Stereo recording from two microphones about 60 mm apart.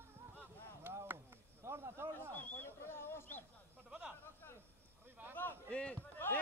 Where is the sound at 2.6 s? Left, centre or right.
Left.